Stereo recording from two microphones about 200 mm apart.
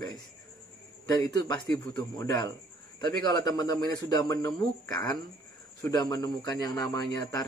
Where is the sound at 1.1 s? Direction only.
20° left (ahead or behind).